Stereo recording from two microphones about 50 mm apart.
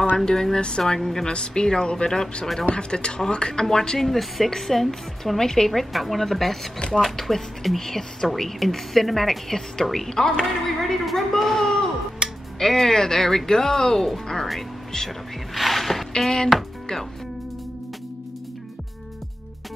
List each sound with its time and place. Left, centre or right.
0.1 s a woman's voice: centre
12.2 s music: centre
12.5 s a woman's voice: centre
15.5 s a sound: centre